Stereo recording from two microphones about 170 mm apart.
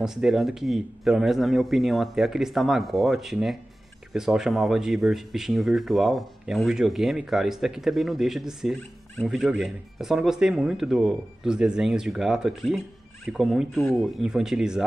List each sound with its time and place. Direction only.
0.0 s speech: 5° right (ahead or behind)